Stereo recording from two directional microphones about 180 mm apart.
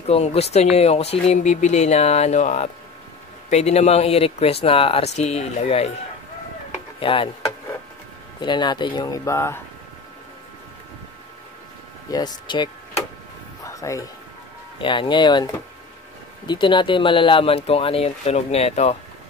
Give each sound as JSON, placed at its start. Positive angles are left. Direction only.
{"t": 0.0, "sound": "speech", "side_deg": 35}
{"t": 7.0, "sound": "speech", "side_deg": 30}
{"t": 8.4, "sound": "speech", "side_deg": 25}
{"t": 12.1, "sound": "speech", "side_deg": 25}
{"t": 13.7, "sound": "a sound", "side_deg": 15}
{"t": 14.8, "sound": "speech", "side_deg": 25}